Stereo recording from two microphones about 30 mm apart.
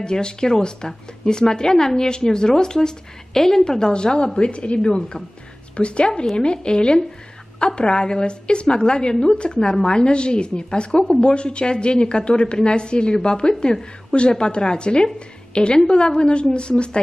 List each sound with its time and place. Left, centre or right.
0.0 s a woman's voice: left
4.7 s a woman's voice: left
9.6 s a woman's voice: left